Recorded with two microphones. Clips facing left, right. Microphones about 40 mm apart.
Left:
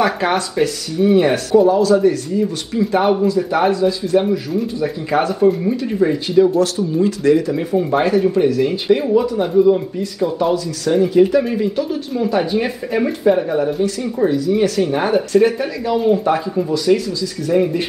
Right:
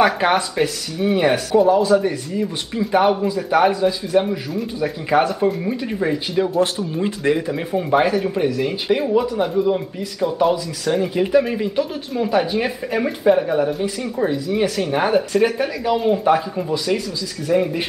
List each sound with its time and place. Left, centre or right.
0.0 s speech: centre
2.9 s speech: centre
6.9 s speech: right; by 17.7 s centre